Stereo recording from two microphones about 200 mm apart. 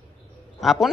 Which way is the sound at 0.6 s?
Centre (ahead or behind).